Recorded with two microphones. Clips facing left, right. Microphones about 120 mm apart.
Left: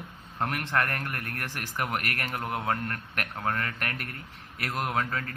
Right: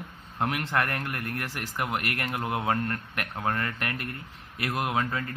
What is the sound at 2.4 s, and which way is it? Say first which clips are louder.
Speech: right 3 dB; 15° right (ahead or behind).